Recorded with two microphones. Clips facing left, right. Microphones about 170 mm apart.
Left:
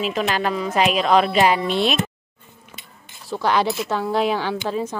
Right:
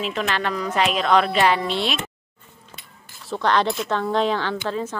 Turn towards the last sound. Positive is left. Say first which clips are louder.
# left 1 dB
turn(degrees=10)  # may be behind; listen again after turning